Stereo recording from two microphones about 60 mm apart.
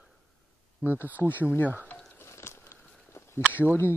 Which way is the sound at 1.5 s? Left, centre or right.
Left.